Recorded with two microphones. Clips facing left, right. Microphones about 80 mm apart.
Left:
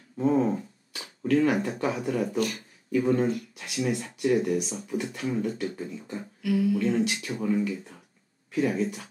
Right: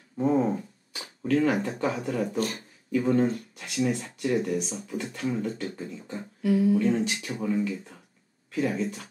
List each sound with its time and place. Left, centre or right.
0.2 s a sound: centre
2.3 s speech: right
2.9 s speech: centre
6.4 s speech: right
7.1 s speech: centre